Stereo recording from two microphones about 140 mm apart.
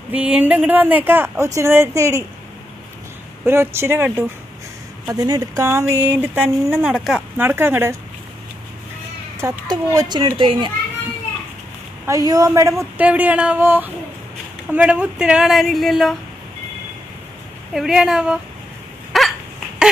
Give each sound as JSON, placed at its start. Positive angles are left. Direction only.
{"t": 0.1, "sound": "speech", "side_deg": -10}
{"t": 3.4, "sound": "speech", "side_deg": -20}
{"t": 7.3, "sound": "speech", "side_deg": -15}
{"t": 9.4, "sound": "a woman's voice", "side_deg": -25}
{"t": 12.1, "sound": "a woman's voice", "side_deg": -25}
{"t": 13.0, "sound": "speech", "side_deg": -10}
{"t": 17.7, "sound": "speech", "side_deg": -5}
{"t": 19.1, "sound": "dog", "side_deg": 0}